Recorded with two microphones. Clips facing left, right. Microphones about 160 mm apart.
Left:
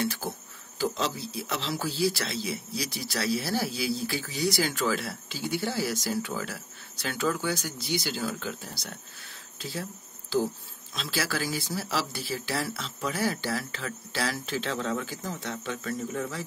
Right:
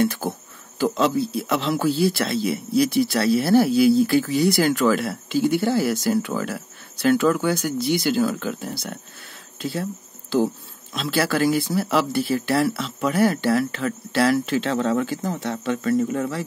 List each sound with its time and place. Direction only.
0.0 s speech: 50° right (ahead or behind); by 16.4 s 70° right (ahead or behind)